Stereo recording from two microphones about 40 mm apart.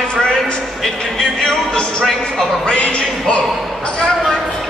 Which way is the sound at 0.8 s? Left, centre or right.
Centre.